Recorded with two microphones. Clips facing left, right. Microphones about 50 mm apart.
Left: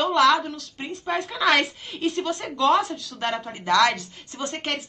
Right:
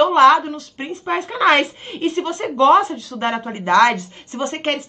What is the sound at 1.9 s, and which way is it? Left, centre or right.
Speech, right.